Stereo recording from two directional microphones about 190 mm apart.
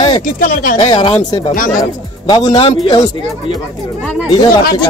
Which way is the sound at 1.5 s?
45° left (ahead or behind).